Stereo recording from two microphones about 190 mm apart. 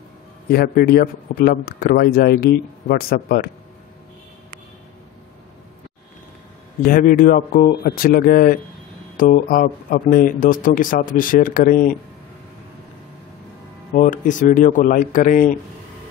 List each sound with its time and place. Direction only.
0.5 s speech: 55° left (ahead or behind)
6.9 s speech: 45° left (ahead or behind)
13.9 s speech: 45° left (ahead or behind)